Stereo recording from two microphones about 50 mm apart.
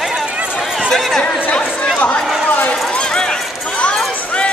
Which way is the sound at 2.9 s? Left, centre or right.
Centre.